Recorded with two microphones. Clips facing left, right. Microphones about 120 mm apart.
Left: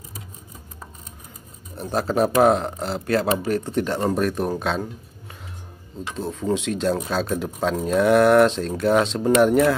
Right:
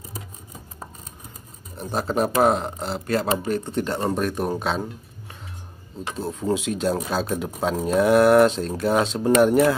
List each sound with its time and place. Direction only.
1.8 s speech: centre (ahead or behind)
6.1 s speech: 5° right (ahead or behind)